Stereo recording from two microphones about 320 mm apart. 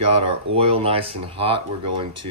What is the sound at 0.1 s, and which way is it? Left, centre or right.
Speech, centre.